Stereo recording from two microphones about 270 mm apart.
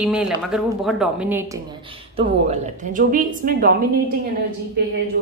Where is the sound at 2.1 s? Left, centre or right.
Right.